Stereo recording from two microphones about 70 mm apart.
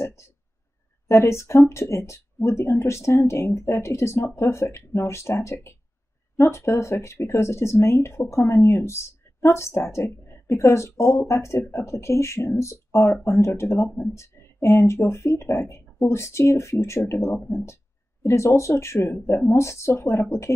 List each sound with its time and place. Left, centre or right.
1.0 s speech: left